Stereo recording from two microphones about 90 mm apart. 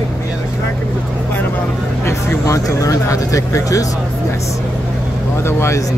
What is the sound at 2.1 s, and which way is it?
Speech, 35° left (ahead or behind).